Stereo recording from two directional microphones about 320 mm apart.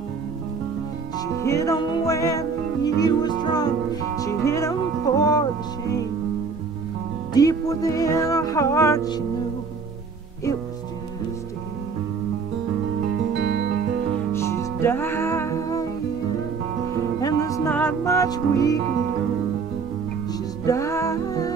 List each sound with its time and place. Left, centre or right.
1.2 s music: centre
7.3 s music: centre
13.4 s music: right
14.3 s music: centre
17.2 s music: centre
20.6 s music: centre